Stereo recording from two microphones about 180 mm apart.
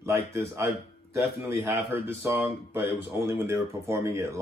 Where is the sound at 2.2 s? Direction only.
10° right (ahead or behind).